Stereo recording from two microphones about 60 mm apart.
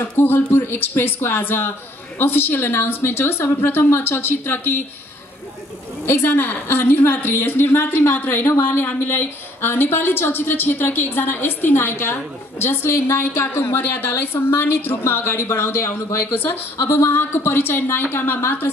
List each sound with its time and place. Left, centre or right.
0.2 s a woman's voice: left
6.0 s a woman's voice: left
16.2 s a woman's voice: left